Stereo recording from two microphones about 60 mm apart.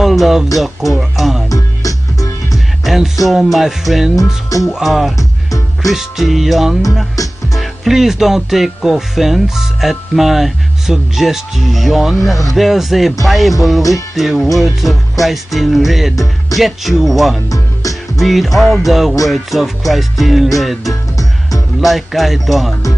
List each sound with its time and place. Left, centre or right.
0.0 s speech: centre
0.9 s music: centre
1.5 s music: left
2.5 s music: centre
7.2 s music: left
7.5 s music: centre
17.5 s music: left
18.2 s music: centre
20.9 s music: left
21.8 s music: centre